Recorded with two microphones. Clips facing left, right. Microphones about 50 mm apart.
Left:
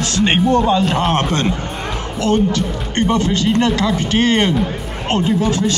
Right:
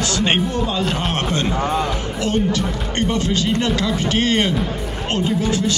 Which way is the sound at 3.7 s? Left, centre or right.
Left.